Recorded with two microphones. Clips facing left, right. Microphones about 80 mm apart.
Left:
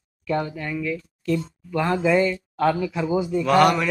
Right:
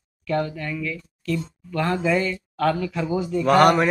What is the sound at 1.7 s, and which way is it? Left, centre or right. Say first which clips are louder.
Speech: left 2 dB; centre.